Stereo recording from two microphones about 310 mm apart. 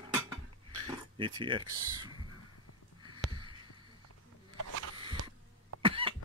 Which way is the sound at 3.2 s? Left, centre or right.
Centre.